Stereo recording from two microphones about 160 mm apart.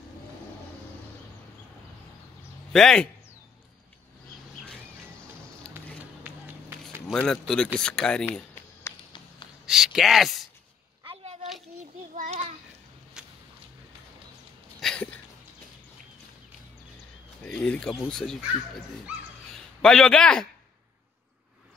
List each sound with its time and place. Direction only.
2.7 s speech: 5° left (ahead or behind)
6.2 s run: 10° right (ahead or behind)
7.2 s speech: 5° left (ahead or behind)
9.7 s speech: centre (ahead or behind)
12.2 s child singing: 50° right (ahead or behind)
13.2 s a sound: 5° right (ahead or behind)
14.8 s a sound: 5° left (ahead or behind)
17.5 s speech: 5° left (ahead or behind)
19.8 s speech: 5° left (ahead or behind)